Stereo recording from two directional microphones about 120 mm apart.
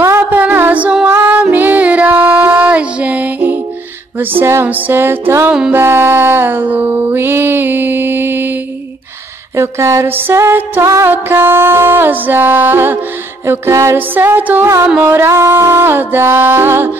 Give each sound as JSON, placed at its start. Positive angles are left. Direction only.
{"t": 0.0, "sound": "music", "side_deg": -20}
{"t": 5.5, "sound": "music", "side_deg": -10}
{"t": 5.8, "sound": "music", "side_deg": -20}
{"t": 9.6, "sound": "music", "side_deg": -25}